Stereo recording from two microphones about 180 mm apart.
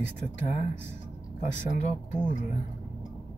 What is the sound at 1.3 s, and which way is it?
Speech, 45° left (ahead or behind).